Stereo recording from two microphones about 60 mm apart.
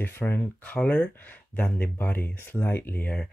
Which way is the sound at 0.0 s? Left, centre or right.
Left.